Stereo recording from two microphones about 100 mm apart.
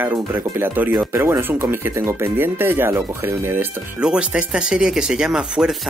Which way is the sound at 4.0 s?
10° right (ahead or behind).